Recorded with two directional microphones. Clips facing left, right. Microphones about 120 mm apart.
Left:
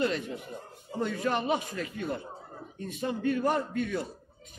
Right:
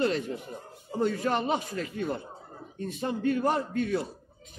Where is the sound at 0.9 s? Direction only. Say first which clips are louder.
Right 3 dB; 40° right (ahead or behind).